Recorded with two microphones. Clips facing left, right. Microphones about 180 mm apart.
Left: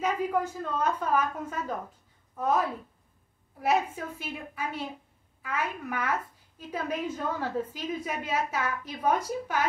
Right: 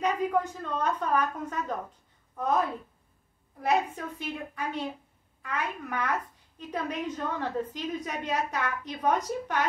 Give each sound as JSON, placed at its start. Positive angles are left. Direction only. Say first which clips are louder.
{"t": 0.0, "sound": "a woman's voice", "louder": "right 1 dB", "side_deg": 5}
{"t": 3.6, "sound": "a woman's voice", "louder": "even", "side_deg": 5}